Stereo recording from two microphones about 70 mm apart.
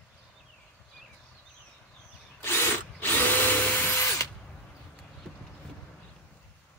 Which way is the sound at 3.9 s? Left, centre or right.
Left.